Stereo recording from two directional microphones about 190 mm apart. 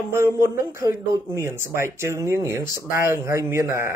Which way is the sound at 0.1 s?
15° right (ahead or behind).